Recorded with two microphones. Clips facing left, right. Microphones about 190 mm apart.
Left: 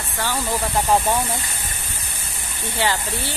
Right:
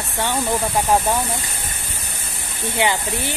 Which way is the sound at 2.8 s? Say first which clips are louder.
Right 2 dB; 15° right (ahead or behind).